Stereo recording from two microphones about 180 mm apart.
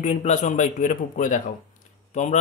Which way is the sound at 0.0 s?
40° left (ahead or behind).